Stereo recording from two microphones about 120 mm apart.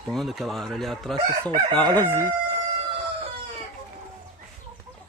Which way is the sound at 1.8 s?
15° left (ahead or behind).